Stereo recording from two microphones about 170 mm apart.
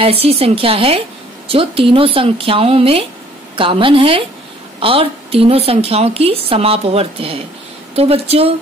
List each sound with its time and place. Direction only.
0.0 s a woman's voice: 35° right (ahead or behind)